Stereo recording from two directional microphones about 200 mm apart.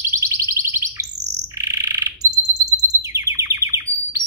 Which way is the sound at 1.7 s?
15° right (ahead or behind).